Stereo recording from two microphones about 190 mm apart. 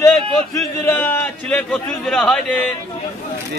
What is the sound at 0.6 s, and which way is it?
A man's voice, 15° left (ahead or behind).